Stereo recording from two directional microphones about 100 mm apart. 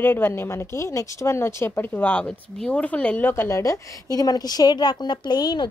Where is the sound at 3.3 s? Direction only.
25° left (ahead or behind).